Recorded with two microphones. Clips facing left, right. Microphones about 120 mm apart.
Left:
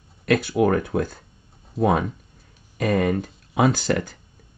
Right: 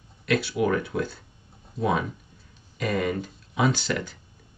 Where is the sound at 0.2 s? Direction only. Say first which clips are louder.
Left 5 dB; 45° left (ahead or behind).